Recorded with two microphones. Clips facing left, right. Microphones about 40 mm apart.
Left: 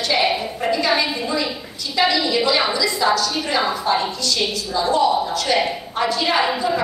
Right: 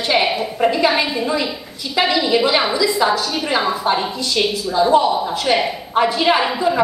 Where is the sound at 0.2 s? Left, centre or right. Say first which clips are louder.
Right 1 dB; centre.